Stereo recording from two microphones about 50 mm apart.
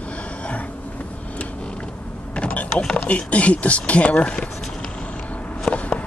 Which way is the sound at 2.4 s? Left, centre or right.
Left.